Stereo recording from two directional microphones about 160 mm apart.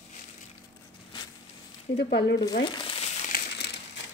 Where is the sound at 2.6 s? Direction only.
30° left (ahead or behind).